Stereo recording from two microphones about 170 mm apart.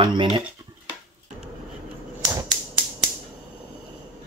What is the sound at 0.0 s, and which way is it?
Speech, 30° right (ahead or behind).